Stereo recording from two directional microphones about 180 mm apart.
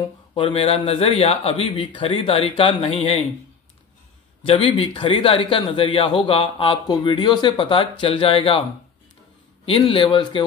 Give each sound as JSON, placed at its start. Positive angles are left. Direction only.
{"t": 0.0, "sound": "speech", "side_deg": 25}
{"t": 4.5, "sound": "a man's voice", "side_deg": 30}
{"t": 9.7, "sound": "a man's voice", "side_deg": 30}